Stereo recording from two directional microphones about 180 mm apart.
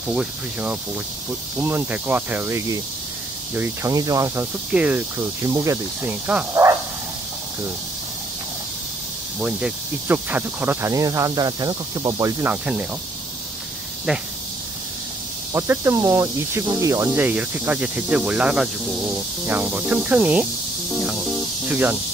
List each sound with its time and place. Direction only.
0.1 s speech: 5° right (ahead or behind)
9.4 s speech: 5° right (ahead or behind)
15.5 s speech: 15° right (ahead or behind)
20.9 s music: centre (ahead or behind)